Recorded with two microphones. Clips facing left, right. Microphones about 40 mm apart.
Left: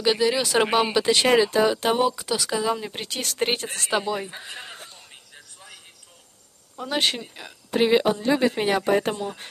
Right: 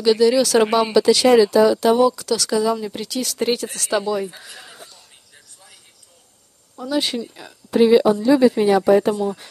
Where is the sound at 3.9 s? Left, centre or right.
Centre; by 5.0 s left.